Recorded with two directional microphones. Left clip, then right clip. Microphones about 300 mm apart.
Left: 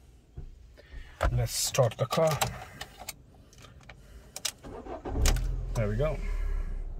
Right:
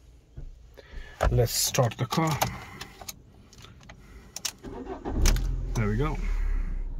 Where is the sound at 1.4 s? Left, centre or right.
Centre.